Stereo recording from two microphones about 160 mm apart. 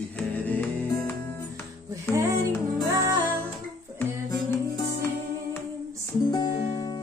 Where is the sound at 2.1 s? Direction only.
20° right (ahead or behind).